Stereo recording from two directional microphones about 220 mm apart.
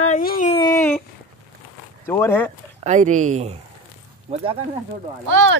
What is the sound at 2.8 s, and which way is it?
Speech, 35° right (ahead or behind).